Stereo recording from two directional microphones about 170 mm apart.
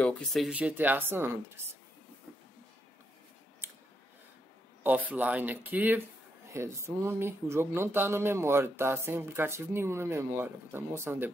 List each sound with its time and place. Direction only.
0.0 s speech: centre (ahead or behind); by 1.8 s 15° right (ahead or behind)
3.6 s clicking: 15° right (ahead or behind)
4.8 s speech: 10° right (ahead or behind)